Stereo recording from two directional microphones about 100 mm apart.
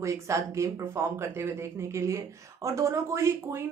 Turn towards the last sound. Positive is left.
turn(degrees=-25)  # may be behind; listen again after turning